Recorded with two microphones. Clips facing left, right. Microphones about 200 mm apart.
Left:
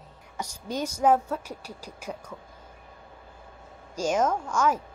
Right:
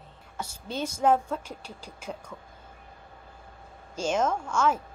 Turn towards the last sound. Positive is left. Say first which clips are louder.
# left 1 dB
turn(degrees=10)  # may be behind; listen again after turning